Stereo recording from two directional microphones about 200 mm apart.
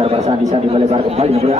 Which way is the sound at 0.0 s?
30° right (ahead or behind).